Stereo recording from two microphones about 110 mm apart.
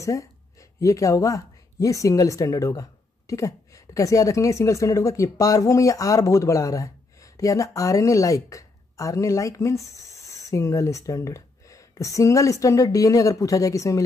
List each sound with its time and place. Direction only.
0.0 s speech: 30° left (ahead or behind)